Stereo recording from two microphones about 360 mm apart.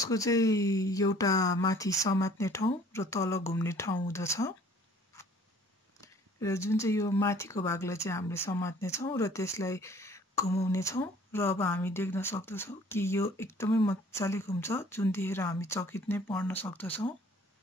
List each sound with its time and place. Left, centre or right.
0.0 s speech: centre
5.1 s tick: centre
5.9 s speech: centre